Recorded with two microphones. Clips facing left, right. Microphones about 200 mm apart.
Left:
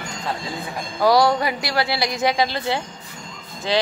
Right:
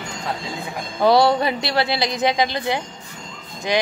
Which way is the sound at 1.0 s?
25° right (ahead or behind).